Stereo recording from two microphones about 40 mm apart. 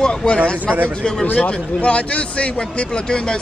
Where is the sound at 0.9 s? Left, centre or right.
Centre.